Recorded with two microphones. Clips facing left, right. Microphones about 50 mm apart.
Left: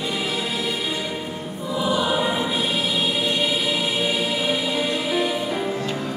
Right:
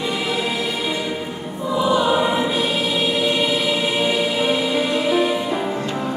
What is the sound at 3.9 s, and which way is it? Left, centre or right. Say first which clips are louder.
Music: right 4 dB; right.